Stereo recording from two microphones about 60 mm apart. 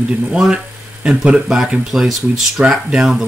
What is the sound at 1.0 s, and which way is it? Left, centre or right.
Speech, centre.